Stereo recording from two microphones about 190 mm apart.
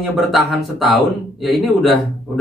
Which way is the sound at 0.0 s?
Centre (ahead or behind).